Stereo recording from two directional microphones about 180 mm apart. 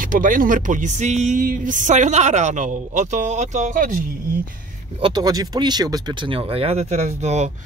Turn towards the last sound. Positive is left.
turn(degrees=-40)  # may be behind; listen again after turning